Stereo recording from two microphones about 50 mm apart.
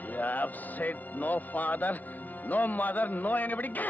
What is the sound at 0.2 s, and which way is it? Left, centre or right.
A man's voice, left.